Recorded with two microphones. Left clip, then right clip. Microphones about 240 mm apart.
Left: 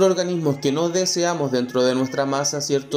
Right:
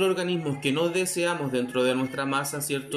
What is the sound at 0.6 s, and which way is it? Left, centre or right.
Speech, centre.